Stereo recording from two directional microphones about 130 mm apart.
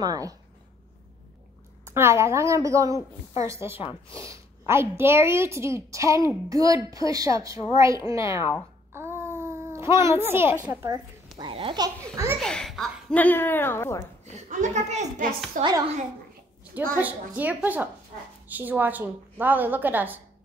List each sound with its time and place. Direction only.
0.0 s speech: 30° right (ahead or behind)
1.9 s speech: 20° right (ahead or behind)
3.7 s speech: 45° left (ahead or behind)
4.3 s speech: 20° right (ahead or behind)
8.9 s babbling: 20° right (ahead or behind)
10.8 s a child's voice: 30° right (ahead or behind)
12.4 s a child's voice: 5° left (ahead or behind)
13.1 s a woman's voice: 15° left (ahead or behind)
14.2 s a woman's voice: 65° right (ahead or behind)
15.6 s a child's voice: 90° right
16.8 s a woman's voice: 15° right (ahead or behind)